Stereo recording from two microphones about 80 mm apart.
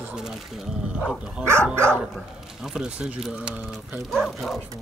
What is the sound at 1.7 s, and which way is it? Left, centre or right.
Speech, right.